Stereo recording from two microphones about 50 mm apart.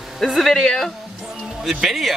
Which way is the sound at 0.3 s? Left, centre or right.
Centre.